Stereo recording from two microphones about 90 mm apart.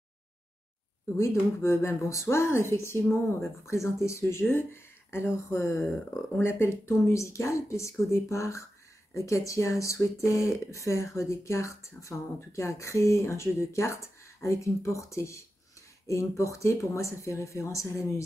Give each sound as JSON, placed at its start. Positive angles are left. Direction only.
{"t": 1.6, "sound": "speech", "side_deg": 30}
{"t": 5.8, "sound": "speech", "side_deg": -5}
{"t": 6.3, "sound": "speech", "side_deg": 30}